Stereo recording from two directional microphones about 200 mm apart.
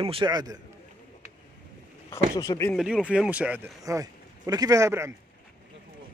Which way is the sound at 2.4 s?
15° left (ahead or behind).